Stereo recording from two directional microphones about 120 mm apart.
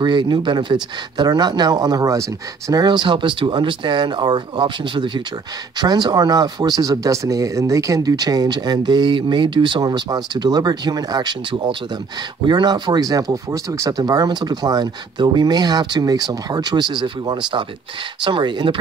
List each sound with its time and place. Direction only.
0.0 s speech: 40° right (ahead or behind)